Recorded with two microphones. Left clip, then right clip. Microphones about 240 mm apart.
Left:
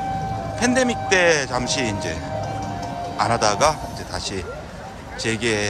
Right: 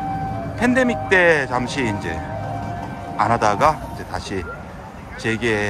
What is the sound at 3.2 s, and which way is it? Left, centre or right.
A man's voice, centre.